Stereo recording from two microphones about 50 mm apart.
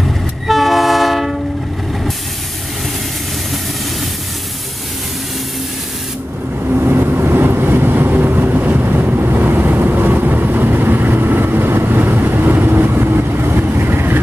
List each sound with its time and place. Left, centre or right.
0.5 s train: centre
6.7 s vehicle: right